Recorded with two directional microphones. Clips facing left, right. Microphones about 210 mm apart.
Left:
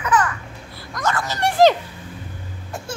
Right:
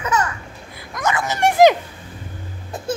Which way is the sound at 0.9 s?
20° right (ahead or behind).